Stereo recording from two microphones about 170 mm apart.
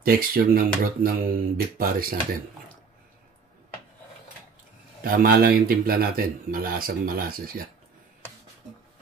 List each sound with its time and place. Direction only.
0.0 s speech: 60° right (ahead or behind)
5.0 s speech: 60° right (ahead or behind)